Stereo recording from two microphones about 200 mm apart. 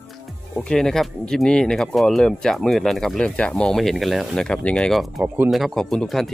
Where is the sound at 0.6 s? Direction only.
5° left (ahead or behind).